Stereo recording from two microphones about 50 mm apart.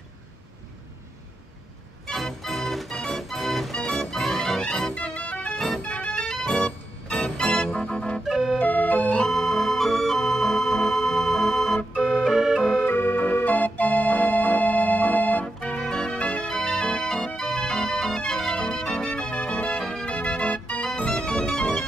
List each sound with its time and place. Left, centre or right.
2.0 s organ: centre
3.7 s music: centre
4.9 s music: left
6.1 s organ: centre
8.3 s organ: centre
8.5 s music: left
9.3 s organ: centre
12.8 s organ: left
15.4 s organ: centre
19.8 s music: centre
20.1 s music: left
20.8 s music: centre